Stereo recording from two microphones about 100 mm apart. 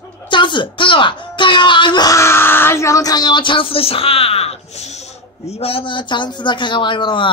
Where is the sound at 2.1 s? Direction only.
25° left (ahead or behind).